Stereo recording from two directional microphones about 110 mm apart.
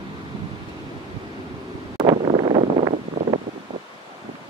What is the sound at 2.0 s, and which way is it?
Wind noise, 65° right (ahead or behind).